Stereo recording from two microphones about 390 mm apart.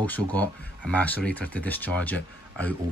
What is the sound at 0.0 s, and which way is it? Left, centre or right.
Speech, centre.